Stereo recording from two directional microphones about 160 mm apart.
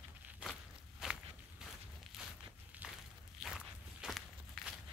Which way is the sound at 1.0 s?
5° right (ahead or behind).